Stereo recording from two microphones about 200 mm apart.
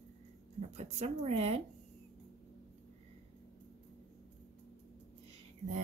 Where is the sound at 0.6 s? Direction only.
30° right (ahead or behind).